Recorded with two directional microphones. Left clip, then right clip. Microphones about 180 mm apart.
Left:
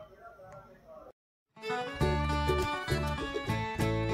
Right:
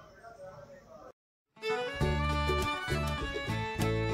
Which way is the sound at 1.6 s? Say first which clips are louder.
Right 1 dB; centre (ahead or behind).